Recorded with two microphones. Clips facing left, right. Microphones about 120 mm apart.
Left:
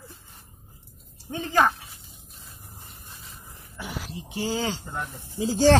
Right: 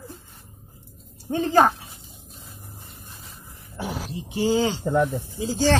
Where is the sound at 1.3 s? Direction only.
35° right (ahead or behind).